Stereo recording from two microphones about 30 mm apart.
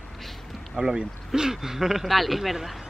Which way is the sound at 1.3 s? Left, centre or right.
Centre.